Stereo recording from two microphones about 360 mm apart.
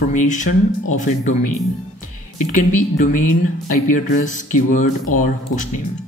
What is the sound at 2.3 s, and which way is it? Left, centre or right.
Speech, left.